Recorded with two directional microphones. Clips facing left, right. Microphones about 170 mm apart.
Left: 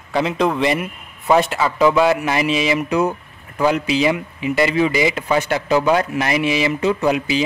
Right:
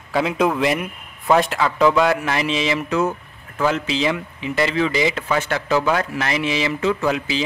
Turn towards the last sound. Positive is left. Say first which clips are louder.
# left 3 dB
turn(degrees=15)  # may be behind; listen again after turning